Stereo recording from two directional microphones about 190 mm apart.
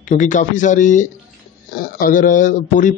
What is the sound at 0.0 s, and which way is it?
A man's voice, 40° left (ahead or behind).